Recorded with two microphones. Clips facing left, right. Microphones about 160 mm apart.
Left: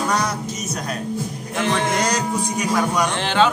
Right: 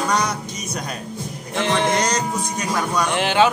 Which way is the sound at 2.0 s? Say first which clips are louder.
Left 1 dB; 10° left (ahead or behind).